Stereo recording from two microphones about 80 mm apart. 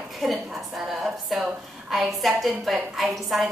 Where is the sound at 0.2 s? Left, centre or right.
Centre.